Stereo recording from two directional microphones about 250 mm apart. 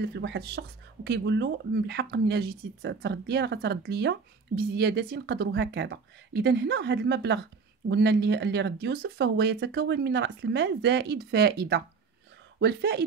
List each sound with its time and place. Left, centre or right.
0.0 s speech: right